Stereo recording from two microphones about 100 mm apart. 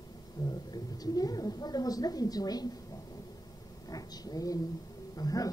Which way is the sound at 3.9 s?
40° left (ahead or behind).